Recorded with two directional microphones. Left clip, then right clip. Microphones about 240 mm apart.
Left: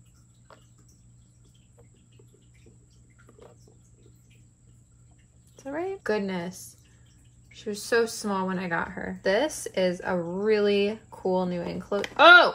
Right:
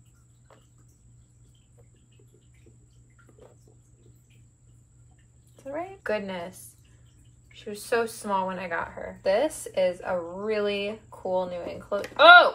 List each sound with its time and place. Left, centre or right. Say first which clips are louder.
5.6 s a woman's voice: left 1 dB; left
6.0 s a woman's voice: right 1 dB; left